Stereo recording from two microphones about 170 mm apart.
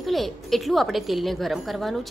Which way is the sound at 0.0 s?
Centre (ahead or behind).